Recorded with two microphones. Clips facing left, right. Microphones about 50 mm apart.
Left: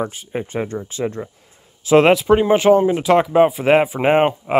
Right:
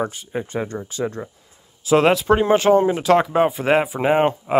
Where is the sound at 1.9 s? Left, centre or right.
Left.